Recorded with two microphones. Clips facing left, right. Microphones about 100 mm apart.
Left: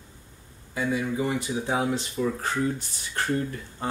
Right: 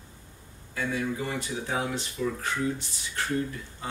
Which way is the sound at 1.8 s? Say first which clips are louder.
Left 3 dB; 35° left (ahead or behind).